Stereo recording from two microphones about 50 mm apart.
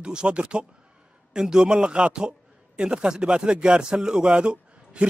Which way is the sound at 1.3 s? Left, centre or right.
Centre.